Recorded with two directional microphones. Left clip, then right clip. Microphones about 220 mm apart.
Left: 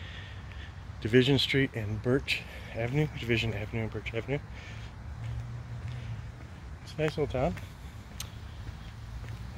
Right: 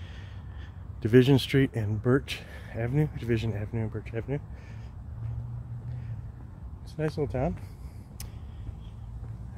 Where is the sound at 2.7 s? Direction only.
20° right (ahead or behind).